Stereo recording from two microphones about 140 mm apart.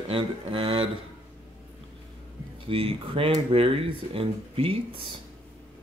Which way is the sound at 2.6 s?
40° right (ahead or behind).